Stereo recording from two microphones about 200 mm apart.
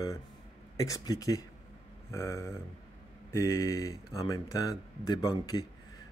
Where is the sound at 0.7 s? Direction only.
15° left (ahead or behind).